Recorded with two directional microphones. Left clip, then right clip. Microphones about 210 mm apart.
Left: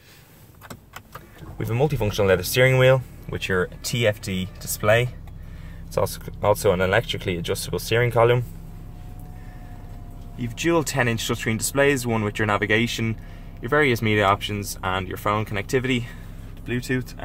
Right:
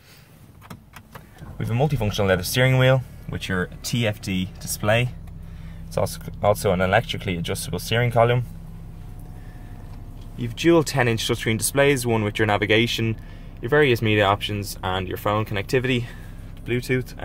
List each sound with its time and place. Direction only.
1.6 s speech: centre (ahead or behind)
10.3 s speech: 10° right (ahead or behind)